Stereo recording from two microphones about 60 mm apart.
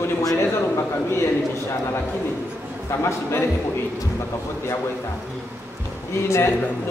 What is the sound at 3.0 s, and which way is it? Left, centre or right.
Speech, left.